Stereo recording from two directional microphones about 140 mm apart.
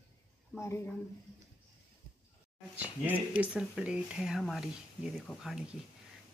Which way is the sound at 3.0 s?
10° right (ahead or behind).